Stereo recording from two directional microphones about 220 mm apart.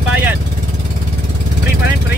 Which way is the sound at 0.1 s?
10° right (ahead or behind).